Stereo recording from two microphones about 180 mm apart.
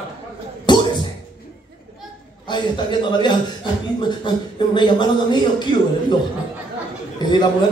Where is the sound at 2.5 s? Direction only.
25° left (ahead or behind).